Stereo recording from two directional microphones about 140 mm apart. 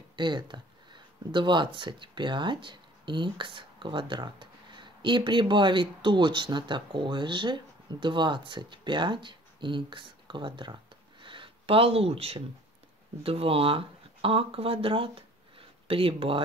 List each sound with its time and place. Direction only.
0.1 s speech: 35° right (ahead or behind)